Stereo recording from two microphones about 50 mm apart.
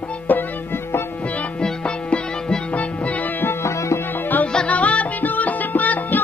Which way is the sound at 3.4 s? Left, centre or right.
Left.